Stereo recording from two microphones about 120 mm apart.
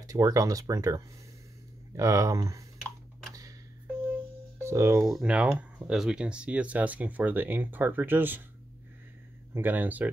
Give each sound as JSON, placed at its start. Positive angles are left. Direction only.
{"t": 0.0, "sound": "speech", "side_deg": -30}
{"t": 4.6, "sound": "speech", "side_deg": -20}
{"t": 5.0, "sound": "speech", "side_deg": -5}
{"t": 9.5, "sound": "speech", "side_deg": -15}